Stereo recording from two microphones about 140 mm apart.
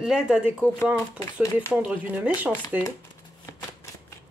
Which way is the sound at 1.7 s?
10° right (ahead or behind).